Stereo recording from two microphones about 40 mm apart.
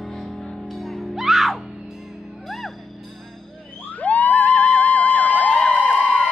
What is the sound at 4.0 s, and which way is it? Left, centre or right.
Vehicle, left.